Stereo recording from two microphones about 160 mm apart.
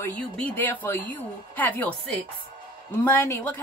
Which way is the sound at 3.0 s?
15° left (ahead or behind).